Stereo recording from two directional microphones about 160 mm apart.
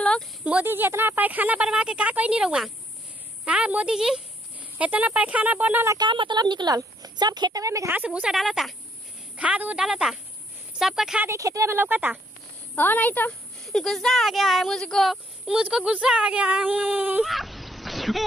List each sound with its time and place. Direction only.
0.4 s speech: 10° right (ahead or behind)
5.9 s a woman's voice: 30° right (ahead or behind); by 11.2 s 5° right (ahead or behind)
11.2 s speech: 20° right (ahead or behind)
12.7 s a woman's voice: 10° left (ahead or behind)